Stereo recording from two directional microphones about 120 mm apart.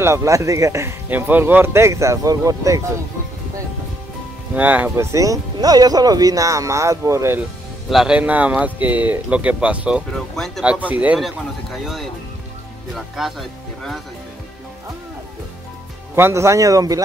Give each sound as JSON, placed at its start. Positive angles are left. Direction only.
{"t": 0.0, "sound": "speech", "side_deg": -25}
{"t": 4.6, "sound": "speech", "side_deg": -10}
{"t": 5.1, "sound": "speech", "side_deg": -30}
{"t": 7.9, "sound": "speech", "side_deg": -5}
{"t": 10.1, "sound": "speech", "side_deg": 5}
{"t": 10.6, "sound": "speech", "side_deg": -10}
{"t": 11.1, "sound": "speech", "side_deg": 0}
{"t": 16.2, "sound": "speech", "side_deg": -20}